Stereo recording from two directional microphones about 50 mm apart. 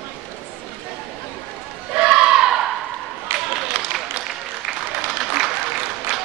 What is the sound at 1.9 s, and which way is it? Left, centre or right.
Crowd, centre.